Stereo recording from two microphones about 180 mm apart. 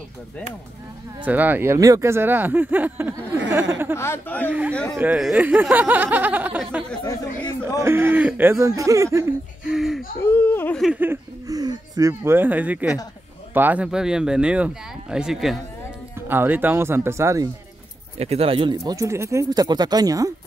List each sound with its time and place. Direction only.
1.2 s speech: 10° right (ahead or behind)
3.9 s speech: 15° left (ahead or behind)
4.5 s speech: 10° right (ahead or behind)
7.0 s speech: 20° left (ahead or behind)
7.8 s speech: 15° right (ahead or behind)
9.7 s gasp: centre (ahead or behind)
10.2 s a sound: 10° left (ahead or behind)
10.8 s speech: 5° right (ahead or behind)
18.2 s speech: 35° right (ahead or behind)